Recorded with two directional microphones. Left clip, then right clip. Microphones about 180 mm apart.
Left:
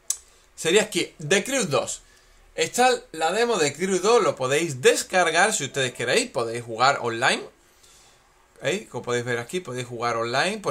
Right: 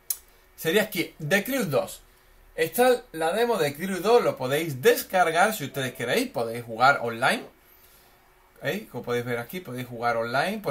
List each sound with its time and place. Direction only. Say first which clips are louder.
0.1 s a man's voice: left 7 dB; 40° left (ahead or behind)
8.6 s a man's voice: left 3 dB; 40° left (ahead or behind)